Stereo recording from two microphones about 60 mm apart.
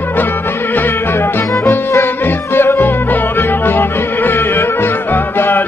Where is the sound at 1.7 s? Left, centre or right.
Left.